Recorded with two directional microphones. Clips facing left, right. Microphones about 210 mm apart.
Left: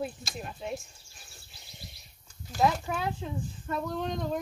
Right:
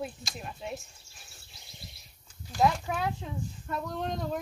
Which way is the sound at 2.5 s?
Centre (ahead or behind).